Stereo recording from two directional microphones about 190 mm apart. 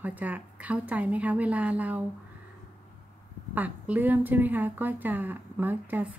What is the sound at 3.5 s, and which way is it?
A woman's voice, 10° right (ahead or behind).